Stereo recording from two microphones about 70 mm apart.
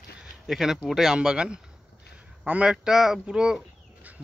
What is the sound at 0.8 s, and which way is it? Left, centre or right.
A man's voice, centre.